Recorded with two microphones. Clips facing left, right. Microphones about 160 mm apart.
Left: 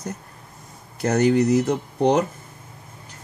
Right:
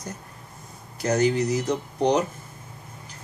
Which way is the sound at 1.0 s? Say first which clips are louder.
Left 4 dB; 55° left (ahead or behind).